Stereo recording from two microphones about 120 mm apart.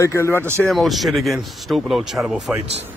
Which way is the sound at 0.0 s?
20° left (ahead or behind).